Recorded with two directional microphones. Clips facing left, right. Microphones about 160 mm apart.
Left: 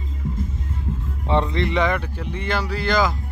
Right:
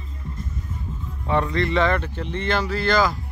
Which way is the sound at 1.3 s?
20° left (ahead or behind).